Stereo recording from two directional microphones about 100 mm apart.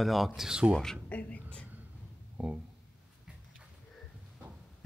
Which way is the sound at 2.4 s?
10° right (ahead or behind).